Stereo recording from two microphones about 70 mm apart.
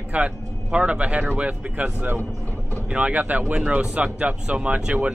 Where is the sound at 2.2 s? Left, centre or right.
Left.